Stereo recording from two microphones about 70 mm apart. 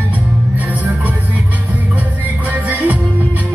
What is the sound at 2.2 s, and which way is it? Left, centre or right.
Music, right.